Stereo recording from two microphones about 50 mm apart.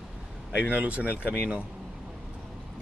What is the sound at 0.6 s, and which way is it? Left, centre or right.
Speech, right.